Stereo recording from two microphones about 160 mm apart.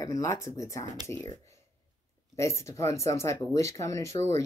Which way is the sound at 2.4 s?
15° left (ahead or behind).